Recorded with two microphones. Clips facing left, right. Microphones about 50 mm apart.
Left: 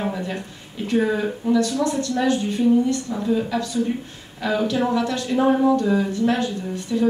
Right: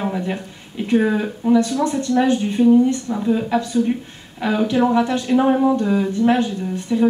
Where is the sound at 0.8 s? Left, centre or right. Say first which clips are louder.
Right 3 dB; centre.